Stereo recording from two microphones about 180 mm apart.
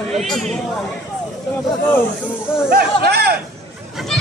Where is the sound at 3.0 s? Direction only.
60° right (ahead or behind).